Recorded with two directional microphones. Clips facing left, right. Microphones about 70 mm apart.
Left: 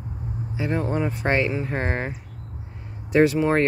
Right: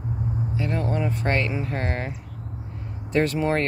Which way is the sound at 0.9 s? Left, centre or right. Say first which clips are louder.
Left 2 dB; centre.